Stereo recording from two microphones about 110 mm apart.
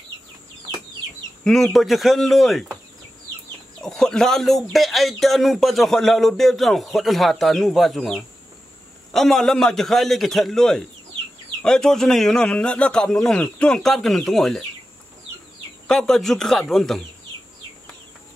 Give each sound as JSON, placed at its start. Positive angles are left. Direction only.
{"t": 1.4, "sound": "speech", "side_deg": 0}
{"t": 3.8, "sound": "speech", "side_deg": 5}
{"t": 9.1, "sound": "speech", "side_deg": 5}
{"t": 15.9, "sound": "speech", "side_deg": 5}